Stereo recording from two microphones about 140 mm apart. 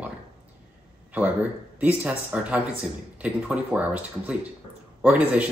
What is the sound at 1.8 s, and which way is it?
Speech, 10° right (ahead or behind).